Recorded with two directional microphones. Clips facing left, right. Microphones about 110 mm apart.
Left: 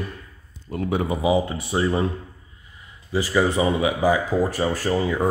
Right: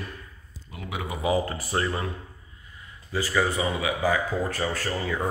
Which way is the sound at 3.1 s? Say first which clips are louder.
Left 5 dB; 20° left (ahead or behind).